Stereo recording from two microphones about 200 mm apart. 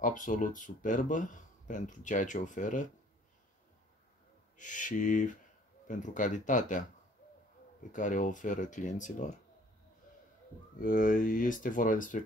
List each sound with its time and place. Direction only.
0.0 s speech: 40° left (ahead or behind)
4.6 s speech: 40° left (ahead or behind)
7.9 s speech: 40° left (ahead or behind)
10.8 s speech: 45° left (ahead or behind)